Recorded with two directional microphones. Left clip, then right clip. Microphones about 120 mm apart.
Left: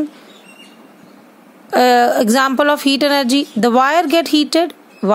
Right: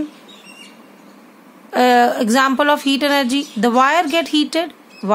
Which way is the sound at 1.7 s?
70° left (ahead or behind).